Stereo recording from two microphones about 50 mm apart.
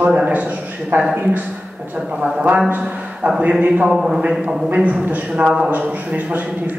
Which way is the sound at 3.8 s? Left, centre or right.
Centre.